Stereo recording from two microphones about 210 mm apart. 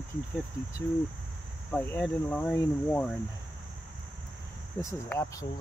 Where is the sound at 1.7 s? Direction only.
10° left (ahead or behind).